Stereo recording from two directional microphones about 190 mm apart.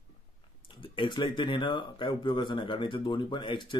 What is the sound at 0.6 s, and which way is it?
Speech, 25° left (ahead or behind).